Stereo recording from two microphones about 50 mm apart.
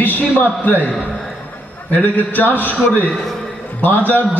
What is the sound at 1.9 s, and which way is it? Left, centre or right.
A man's voice, left.